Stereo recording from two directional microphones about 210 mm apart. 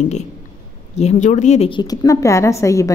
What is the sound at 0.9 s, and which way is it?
A woman's voice, 35° left (ahead or behind).